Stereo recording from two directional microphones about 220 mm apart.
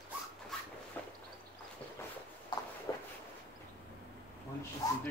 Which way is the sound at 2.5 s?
20° left (ahead or behind).